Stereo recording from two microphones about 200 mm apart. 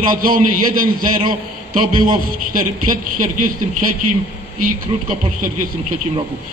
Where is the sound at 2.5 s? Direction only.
40° right (ahead or behind).